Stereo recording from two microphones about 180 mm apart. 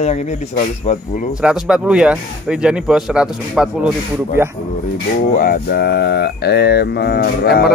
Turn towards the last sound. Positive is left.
turn(degrees=60)  # may be behind; listen again after turning